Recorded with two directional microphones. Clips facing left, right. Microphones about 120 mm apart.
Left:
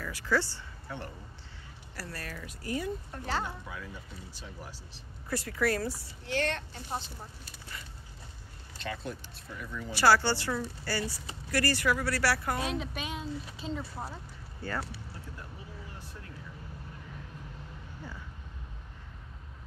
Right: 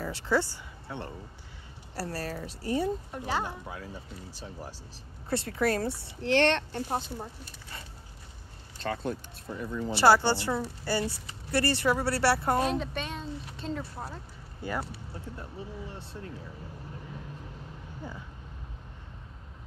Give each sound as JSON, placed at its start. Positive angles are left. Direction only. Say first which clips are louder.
{"t": 0.0, "sound": "speech", "louder": "right 2 dB", "side_deg": -25}
{"t": 3.1, "sound": "speech", "louder": "right 2 dB", "side_deg": -15}
{"t": 3.4, "sound": "speech", "louder": "right 2 dB", "side_deg": -30}
{"t": 5.3, "sound": "speech", "louder": "right 2 dB", "side_deg": -25}
{"t": 6.2, "sound": "speech", "louder": "right 8 dB", "side_deg": -75}
{"t": 6.9, "sound": "speech", "louder": "right 3 dB", "side_deg": -45}
{"t": 8.8, "sound": "speech", "louder": "right 6 dB", "side_deg": -45}
{"t": 9.8, "sound": "speech", "louder": "right 3 dB", "side_deg": -20}
{"t": 12.5, "sound": "speech", "louder": "right 5 dB", "side_deg": 0}
{"t": 14.6, "sound": "speech", "louder": "right 2 dB", "side_deg": -15}